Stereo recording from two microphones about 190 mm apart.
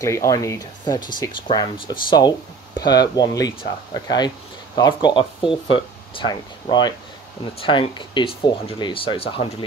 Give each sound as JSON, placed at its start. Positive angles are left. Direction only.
{"t": 0.0, "sound": "speech", "side_deg": 15}